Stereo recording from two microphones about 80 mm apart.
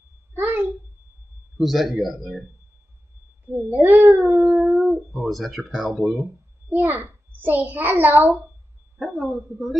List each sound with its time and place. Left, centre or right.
0.4 s babbling: right
1.6 s speech: centre
3.5 s a child's voice: right
4.2 s speech: centre
6.7 s a child's voice: right
9.0 s speech: centre